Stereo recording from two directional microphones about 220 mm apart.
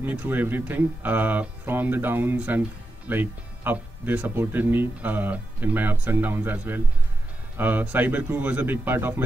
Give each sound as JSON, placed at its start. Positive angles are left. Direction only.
{"t": 0.0, "sound": "speech", "side_deg": -10}